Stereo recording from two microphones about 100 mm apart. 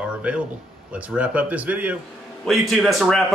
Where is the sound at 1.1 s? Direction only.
15° right (ahead or behind).